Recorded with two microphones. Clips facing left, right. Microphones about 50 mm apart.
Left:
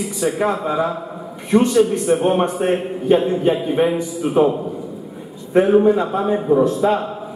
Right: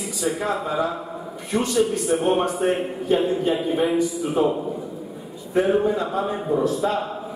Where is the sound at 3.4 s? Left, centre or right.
Left.